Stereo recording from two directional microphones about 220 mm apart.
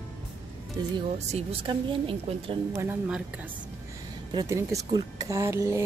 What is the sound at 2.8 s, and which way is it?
Speech, 5° right (ahead or behind).